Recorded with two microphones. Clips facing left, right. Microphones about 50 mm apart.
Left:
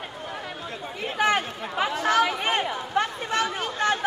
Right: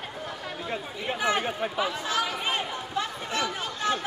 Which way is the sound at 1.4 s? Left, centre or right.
Centre.